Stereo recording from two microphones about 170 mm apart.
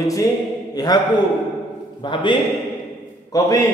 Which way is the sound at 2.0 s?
30° left (ahead or behind).